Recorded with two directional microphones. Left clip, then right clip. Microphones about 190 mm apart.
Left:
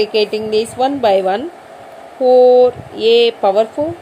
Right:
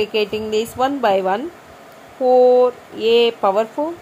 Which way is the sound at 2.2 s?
20° right (ahead or behind).